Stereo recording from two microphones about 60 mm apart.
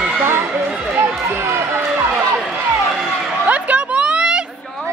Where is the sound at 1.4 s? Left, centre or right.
Right.